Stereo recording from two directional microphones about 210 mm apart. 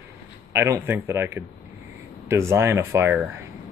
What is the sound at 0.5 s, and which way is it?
Speech, 10° right (ahead or behind).